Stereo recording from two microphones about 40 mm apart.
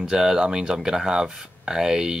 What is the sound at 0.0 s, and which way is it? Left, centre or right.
Speech, centre.